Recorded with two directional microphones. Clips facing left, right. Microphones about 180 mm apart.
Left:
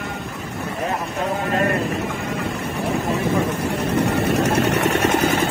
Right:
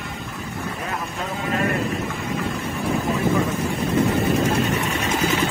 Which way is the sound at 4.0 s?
80° left.